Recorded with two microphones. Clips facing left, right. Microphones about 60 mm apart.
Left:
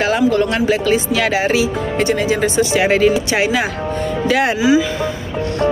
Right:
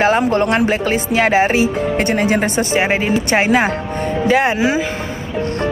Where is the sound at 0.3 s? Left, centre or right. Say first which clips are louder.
Even; right.